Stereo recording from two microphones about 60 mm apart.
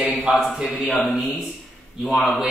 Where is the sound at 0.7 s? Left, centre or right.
Centre.